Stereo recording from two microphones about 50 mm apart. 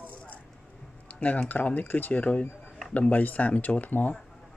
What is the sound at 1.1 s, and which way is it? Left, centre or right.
Speech, left.